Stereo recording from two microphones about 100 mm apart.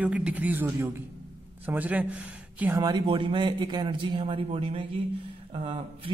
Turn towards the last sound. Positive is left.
turn(degrees=-65)  # may be behind; listen again after turning